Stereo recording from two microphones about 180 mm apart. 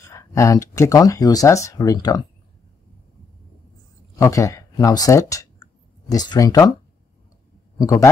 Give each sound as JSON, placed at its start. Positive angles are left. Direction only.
{"t": 0.1, "sound": "speech", "side_deg": 15}
{"t": 4.2, "sound": "speech", "side_deg": 20}
{"t": 7.8, "sound": "a man's voice", "side_deg": 20}